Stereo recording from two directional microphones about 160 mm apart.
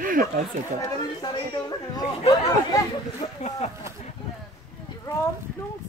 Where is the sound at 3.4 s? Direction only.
40° left (ahead or behind).